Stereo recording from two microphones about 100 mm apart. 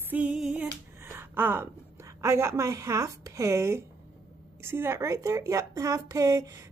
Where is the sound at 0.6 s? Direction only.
20° right (ahead or behind).